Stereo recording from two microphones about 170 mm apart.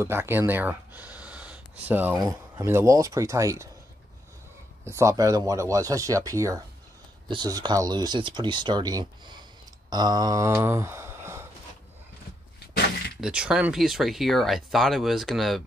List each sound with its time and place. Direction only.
0.0 s speech: 15° right (ahead or behind)
2.1 s speech: 20° right (ahead or behind)
4.8 s speech: 15° right (ahead or behind)
9.8 s mantra: 25° right (ahead or behind)
13.2 s speech: 5° right (ahead or behind)